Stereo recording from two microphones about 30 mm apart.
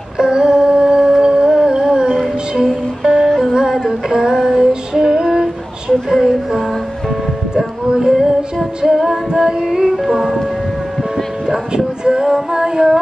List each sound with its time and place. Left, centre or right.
0.2 s humming: right
2.0 s music: centre
2.5 s music: centre
4.3 s female singing: centre
5.9 s speech: centre
8.0 s female singing: centre
10.0 s music: centre
11.4 s a sound: centre
12.0 s female singing: right
12.4 s singing: centre